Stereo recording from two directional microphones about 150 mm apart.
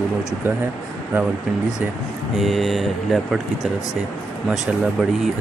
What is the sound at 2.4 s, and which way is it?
Speech, centre (ahead or behind).